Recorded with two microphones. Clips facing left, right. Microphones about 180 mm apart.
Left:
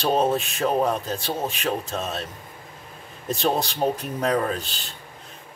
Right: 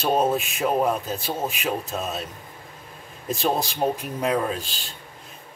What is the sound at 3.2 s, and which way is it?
Speech, centre (ahead or behind).